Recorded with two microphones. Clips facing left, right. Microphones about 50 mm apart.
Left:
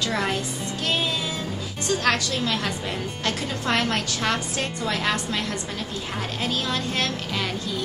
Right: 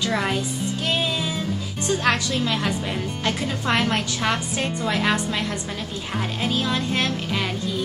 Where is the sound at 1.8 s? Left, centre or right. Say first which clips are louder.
Right 1 dB; centre.